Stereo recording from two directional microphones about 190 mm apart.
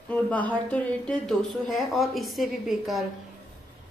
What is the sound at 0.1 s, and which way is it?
A woman's voice, 10° left (ahead or behind).